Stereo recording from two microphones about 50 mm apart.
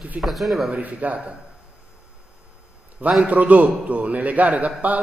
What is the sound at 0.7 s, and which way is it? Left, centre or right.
Speech, right.